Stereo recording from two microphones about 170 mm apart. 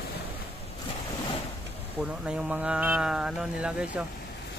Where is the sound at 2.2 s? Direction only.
5° right (ahead or behind).